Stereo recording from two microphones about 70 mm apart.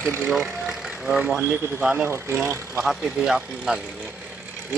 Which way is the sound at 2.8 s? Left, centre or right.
Centre.